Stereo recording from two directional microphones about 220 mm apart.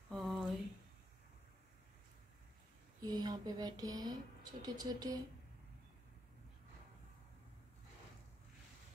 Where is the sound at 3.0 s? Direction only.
15° right (ahead or behind).